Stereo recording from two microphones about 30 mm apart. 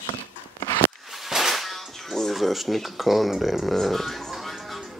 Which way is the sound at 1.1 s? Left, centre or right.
Centre.